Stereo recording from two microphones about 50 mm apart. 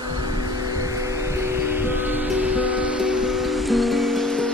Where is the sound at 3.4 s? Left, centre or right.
Centre.